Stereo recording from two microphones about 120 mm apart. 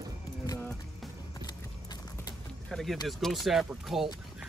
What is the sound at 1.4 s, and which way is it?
Clip-clop, 35° left (ahead or behind).